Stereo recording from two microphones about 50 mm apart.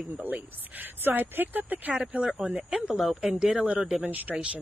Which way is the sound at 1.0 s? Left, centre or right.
Right.